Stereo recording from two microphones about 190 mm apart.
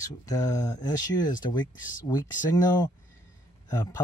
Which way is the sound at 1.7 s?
45° left (ahead or behind).